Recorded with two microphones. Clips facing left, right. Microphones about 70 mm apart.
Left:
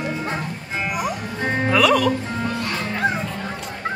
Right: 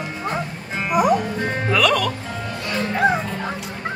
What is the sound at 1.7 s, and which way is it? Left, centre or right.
Music, centre.